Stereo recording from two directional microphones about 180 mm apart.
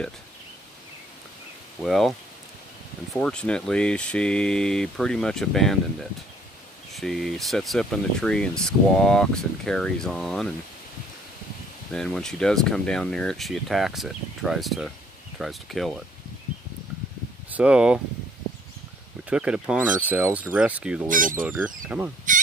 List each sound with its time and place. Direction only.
1.8 s speech: centre (ahead or behind)
3.2 s speech: 5° left (ahead or behind)
6.9 s speech: centre (ahead or behind)
11.9 s speech: 5° left (ahead or behind)
17.5 s speech: 5° right (ahead or behind)
19.2 s speech: 5° right (ahead or behind)
21.1 s speech: 50° right (ahead or behind)
21.5 s speech: 10° right (ahead or behind)